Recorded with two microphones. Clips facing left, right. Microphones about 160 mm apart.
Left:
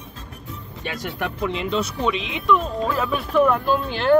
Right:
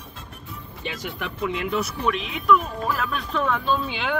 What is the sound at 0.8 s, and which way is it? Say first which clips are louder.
Speech: left 2 dB; 55° left (ahead or behind).